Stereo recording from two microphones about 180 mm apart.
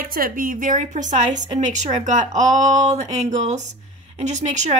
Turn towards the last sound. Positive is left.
turn(degrees=-40)  # may be behind; listen again after turning